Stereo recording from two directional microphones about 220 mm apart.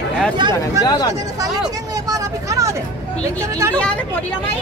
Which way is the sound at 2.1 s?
15° right (ahead or behind).